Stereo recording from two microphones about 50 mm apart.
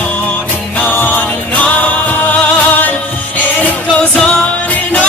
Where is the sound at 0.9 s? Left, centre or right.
Left.